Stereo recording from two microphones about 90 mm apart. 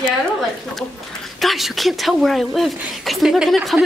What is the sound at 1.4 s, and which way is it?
Speech, centre (ahead or behind).